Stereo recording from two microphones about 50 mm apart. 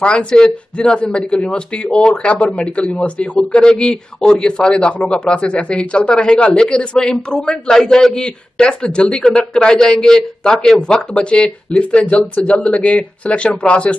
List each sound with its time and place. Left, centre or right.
0.0 s speech: left